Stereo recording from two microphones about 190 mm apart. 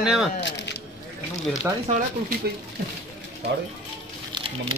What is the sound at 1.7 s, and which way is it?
Speech, 15° right (ahead or behind).